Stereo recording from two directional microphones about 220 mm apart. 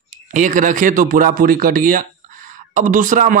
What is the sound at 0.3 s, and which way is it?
Speech, 35° right (ahead or behind).